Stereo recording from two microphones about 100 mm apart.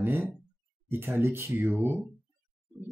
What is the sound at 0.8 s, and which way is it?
Speech, 20° right (ahead or behind).